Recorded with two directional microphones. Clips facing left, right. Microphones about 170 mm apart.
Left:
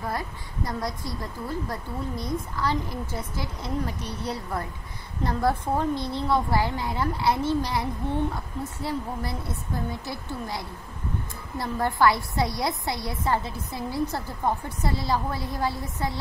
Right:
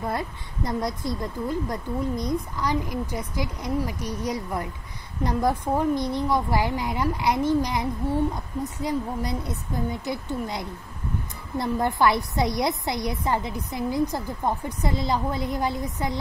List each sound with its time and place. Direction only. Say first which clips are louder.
0.1 s a woman's voice: right 2 dB; 20° right (ahead or behind)